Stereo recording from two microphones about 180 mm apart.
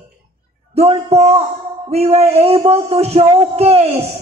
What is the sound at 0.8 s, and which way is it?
A woman's voice, 35° right (ahead or behind).